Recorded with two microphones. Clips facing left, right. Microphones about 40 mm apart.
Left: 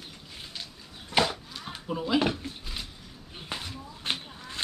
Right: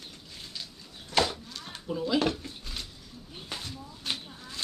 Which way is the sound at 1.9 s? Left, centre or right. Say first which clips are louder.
Left 1 dB; left.